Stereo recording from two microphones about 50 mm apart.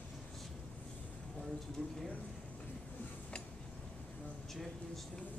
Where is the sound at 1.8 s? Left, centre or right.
Centre.